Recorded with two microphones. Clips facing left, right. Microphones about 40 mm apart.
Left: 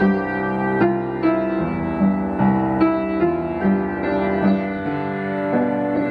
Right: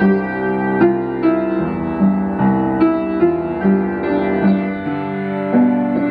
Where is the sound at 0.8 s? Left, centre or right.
Centre.